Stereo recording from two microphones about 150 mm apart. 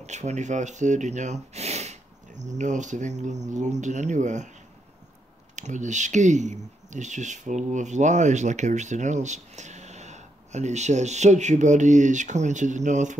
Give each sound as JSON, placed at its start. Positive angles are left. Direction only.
{"t": 0.0, "sound": "speech", "side_deg": -50}
{"t": 5.6, "sound": "speech", "side_deg": -55}